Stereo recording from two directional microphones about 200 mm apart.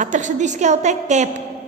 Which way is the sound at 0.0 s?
40° right (ahead or behind).